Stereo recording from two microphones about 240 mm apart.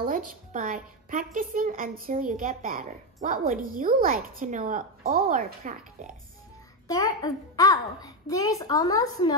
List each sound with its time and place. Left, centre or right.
0.0 s a woman's voice: right
6.9 s a child's voice: centre